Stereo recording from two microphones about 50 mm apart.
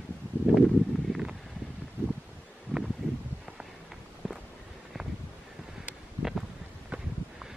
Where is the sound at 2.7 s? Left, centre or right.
Left.